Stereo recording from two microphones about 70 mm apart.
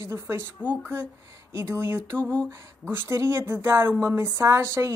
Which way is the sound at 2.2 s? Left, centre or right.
Centre.